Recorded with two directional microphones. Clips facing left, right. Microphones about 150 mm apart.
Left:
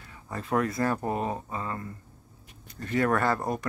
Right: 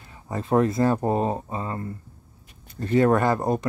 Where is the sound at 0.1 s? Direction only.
25° right (ahead or behind).